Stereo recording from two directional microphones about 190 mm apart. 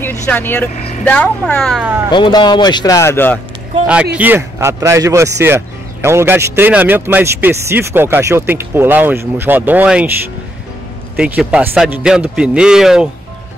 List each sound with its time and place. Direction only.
0.0 s speech: 10° left (ahead or behind)
2.0 s speech: 25° left (ahead or behind)
3.8 s a man's voice: 5° right (ahead or behind)
11.1 s a man's voice: 5° right (ahead or behind)